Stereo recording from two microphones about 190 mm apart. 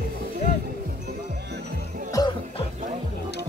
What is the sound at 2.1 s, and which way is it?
Music, 20° left (ahead or behind).